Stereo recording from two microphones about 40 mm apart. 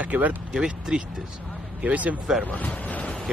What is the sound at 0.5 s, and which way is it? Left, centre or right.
Speech, centre.